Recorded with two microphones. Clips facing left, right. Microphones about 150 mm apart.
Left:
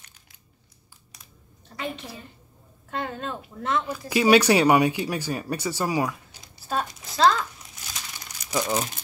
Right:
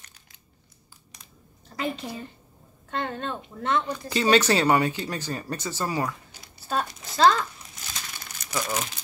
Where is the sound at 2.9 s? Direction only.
5° left (ahead or behind).